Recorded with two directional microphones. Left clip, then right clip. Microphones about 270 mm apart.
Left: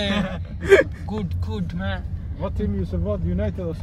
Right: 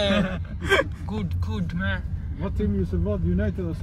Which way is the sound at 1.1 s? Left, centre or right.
Centre.